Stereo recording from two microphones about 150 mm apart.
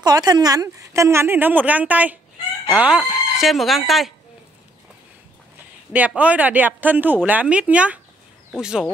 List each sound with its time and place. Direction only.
0.0 s a woman's voice: 25° right (ahead or behind); by 4.1 s centre (ahead or behind)
5.9 s a woman's voice: 10° right (ahead or behind)